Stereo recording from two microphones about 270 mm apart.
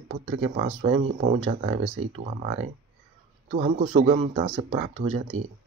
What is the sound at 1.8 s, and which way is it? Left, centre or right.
Speech, right.